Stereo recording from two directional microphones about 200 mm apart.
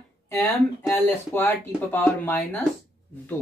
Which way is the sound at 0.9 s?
10° left (ahead or behind).